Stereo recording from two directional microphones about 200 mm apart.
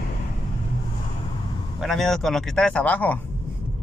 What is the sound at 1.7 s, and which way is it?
Speech, centre (ahead or behind).